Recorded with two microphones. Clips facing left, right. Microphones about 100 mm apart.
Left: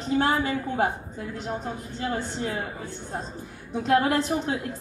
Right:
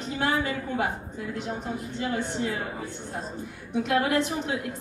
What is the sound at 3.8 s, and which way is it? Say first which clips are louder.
Mantra: left 3 dB; 35° left (ahead or behind).